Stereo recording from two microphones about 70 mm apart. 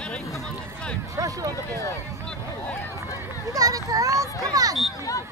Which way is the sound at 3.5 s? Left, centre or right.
Right.